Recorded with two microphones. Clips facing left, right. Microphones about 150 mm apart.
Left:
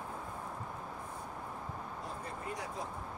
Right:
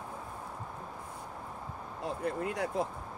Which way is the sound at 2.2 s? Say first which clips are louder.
Right 11 dB; 70° right (ahead or behind).